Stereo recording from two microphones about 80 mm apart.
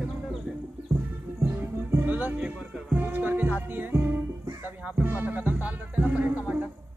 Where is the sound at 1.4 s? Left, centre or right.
Right.